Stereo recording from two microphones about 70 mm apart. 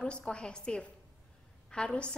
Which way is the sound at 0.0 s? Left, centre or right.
Centre.